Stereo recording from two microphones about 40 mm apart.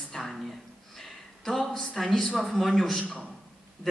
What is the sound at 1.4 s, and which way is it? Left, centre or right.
Speech, centre.